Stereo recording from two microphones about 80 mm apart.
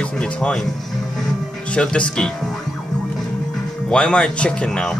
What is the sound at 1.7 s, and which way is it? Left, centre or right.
Speech, centre.